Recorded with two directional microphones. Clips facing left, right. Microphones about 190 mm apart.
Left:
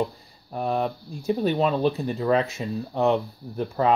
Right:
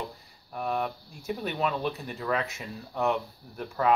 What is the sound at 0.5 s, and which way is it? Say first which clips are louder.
Speech: left 5 dB; 30° left (ahead or behind).